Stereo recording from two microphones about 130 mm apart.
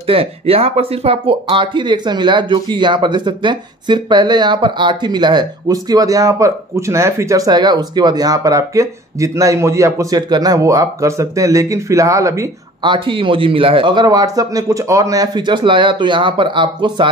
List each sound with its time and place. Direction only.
0.0 s speech: 45° right (ahead or behind); by 12.4 s 25° right (ahead or behind)
12.8 s speech: 40° right (ahead or behind)